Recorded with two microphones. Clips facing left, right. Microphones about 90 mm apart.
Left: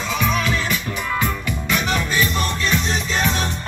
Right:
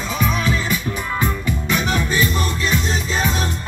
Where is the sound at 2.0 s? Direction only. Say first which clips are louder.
Right 1 dB; 25° right (ahead or behind).